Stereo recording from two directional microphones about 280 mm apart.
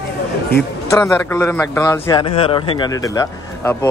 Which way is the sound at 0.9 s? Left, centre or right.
Centre.